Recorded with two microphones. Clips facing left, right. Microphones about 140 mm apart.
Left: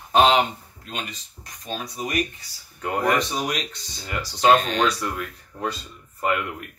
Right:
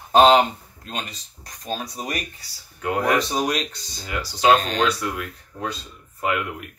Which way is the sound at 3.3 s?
35° right (ahead or behind).